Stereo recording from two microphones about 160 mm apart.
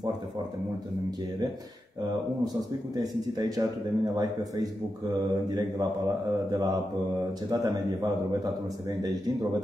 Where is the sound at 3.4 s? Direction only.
25° right (ahead or behind).